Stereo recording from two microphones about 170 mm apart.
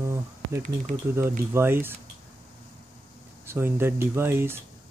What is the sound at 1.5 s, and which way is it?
Speech, 15° right (ahead or behind).